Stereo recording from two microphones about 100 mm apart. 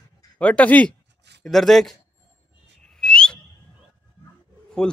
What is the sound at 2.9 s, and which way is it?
Whistle, 10° left (ahead or behind).